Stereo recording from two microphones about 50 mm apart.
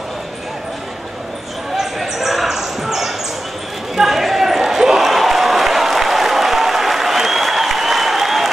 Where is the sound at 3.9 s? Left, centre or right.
Centre.